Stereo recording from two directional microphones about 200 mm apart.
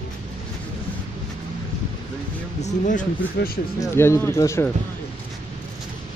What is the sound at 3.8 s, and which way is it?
Speech, 15° left (ahead or behind).